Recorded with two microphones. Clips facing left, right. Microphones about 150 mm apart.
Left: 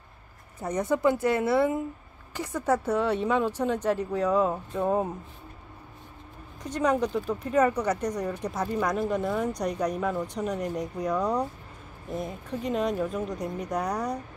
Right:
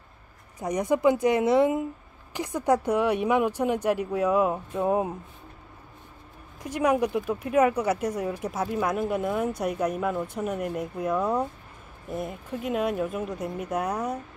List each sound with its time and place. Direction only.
0.6 s speech: 15° right (ahead or behind)
6.6 s speech: 10° right (ahead or behind)